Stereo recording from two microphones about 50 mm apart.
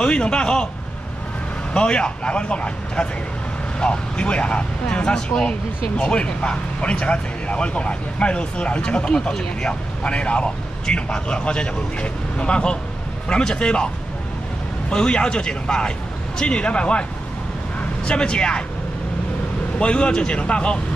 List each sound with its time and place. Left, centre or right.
0.0 s speech: centre
1.7 s speech: centre
14.9 s speech: centre
18.0 s speech: centre
19.8 s speech: centre